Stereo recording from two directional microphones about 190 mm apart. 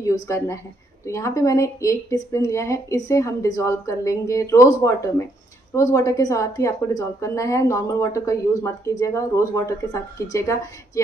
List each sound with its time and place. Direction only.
0.0 s speech: 15° left (ahead or behind)